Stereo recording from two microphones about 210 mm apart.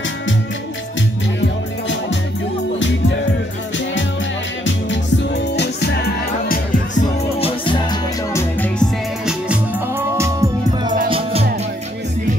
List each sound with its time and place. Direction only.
1.4 s music: 60° left (ahead or behind)
4.6 s music: 60° left (ahead or behind); by 7.1 s 40° left (ahead or behind)
7.3 s music: 25° left (ahead or behind); by 8.8 s 10° left (ahead or behind)
9.2 s music: 5° right (ahead or behind); by 11.4 s 25° right (ahead or behind)